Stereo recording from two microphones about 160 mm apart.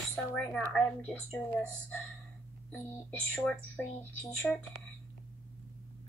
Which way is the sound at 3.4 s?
10° left (ahead or behind).